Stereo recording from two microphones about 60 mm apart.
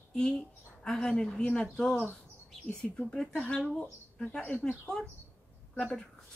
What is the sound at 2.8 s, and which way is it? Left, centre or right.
Speech, left.